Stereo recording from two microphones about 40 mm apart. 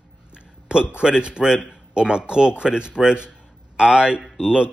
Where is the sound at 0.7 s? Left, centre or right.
Right.